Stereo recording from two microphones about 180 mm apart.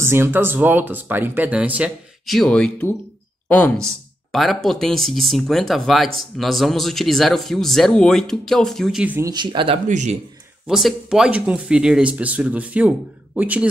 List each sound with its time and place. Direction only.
0.0 s a man's voice: 15° right (ahead or behind)
9.3 s speech: 25° right (ahead or behind)
9.8 s a man's voice: 40° right (ahead or behind)
10.7 s speech: centre (ahead or behind)